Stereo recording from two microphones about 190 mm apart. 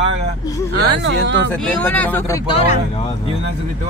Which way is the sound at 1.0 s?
70° right (ahead or behind).